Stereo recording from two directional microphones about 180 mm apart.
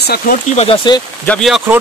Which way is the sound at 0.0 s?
60° left (ahead or behind).